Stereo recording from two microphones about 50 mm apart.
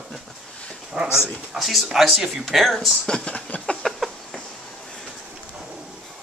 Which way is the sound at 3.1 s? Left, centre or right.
Centre.